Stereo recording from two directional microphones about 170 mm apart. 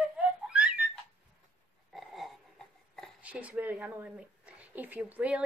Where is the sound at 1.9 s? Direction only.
Centre (ahead or behind).